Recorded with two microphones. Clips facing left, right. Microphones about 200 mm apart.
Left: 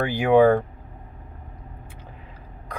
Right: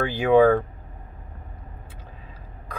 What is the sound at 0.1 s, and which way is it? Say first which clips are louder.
Speech: even; 10° left (ahead or behind).